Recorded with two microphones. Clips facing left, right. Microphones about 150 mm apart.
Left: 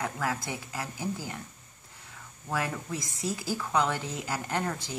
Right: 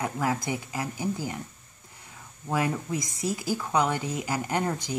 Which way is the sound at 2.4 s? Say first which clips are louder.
Right 5 dB; 15° right (ahead or behind).